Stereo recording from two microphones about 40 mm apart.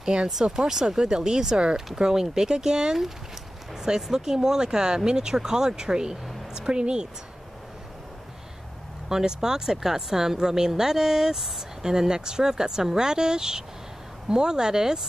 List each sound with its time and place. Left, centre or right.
0.0 s speech: centre
9.1 s speech: centre